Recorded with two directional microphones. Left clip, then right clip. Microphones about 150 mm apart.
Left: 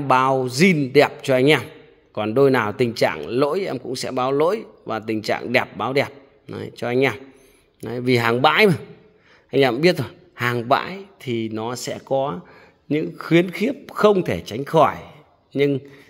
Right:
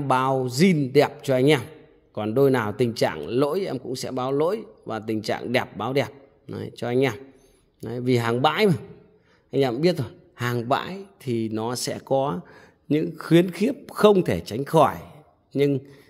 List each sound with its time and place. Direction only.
0.0 s speech: 10° right (ahead or behind)